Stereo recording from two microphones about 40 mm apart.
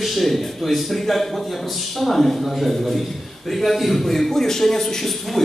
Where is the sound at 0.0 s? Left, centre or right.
Centre.